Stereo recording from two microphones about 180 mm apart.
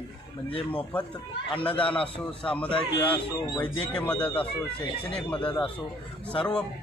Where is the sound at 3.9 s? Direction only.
5° left (ahead or behind).